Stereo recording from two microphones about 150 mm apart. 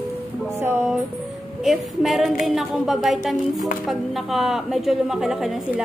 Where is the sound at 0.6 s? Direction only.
15° right (ahead or behind).